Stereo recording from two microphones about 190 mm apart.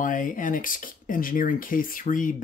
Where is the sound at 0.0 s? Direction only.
45° left (ahead or behind).